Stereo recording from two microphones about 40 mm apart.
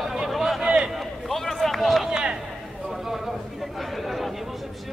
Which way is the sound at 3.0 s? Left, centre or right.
Centre.